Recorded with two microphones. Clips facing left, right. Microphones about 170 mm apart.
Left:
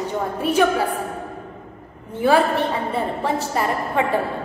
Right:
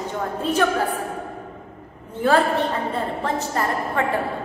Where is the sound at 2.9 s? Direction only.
10° left (ahead or behind).